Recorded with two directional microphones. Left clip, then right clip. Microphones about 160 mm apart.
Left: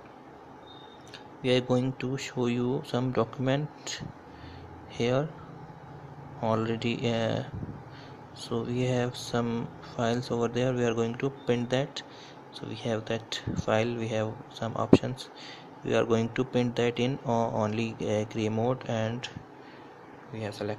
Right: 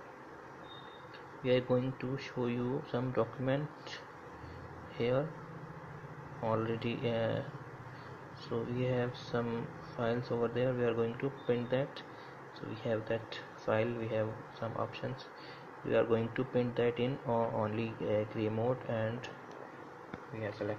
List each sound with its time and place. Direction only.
1.4 s speech: 25° left (ahead or behind)
6.4 s speech: 25° left (ahead or behind)
20.3 s speech: 20° left (ahead or behind)